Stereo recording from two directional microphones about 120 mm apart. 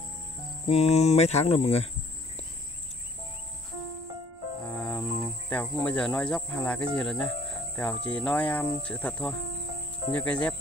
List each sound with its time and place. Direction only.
0.7 s speech: 65° left (ahead or behind)
4.6 s cricket: 15° left (ahead or behind)